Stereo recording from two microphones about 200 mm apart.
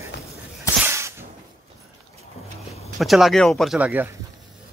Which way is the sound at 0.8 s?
15° right (ahead or behind).